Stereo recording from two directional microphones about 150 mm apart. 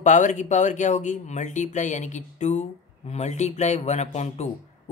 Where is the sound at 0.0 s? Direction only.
55° left (ahead or behind).